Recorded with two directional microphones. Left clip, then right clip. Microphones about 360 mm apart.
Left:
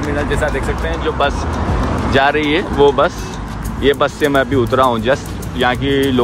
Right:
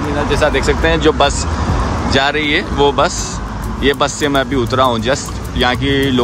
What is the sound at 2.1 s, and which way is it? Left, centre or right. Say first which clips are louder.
Speech: left 1 dB; centre.